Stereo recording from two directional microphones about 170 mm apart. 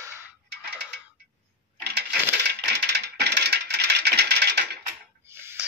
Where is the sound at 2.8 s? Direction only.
70° right (ahead or behind).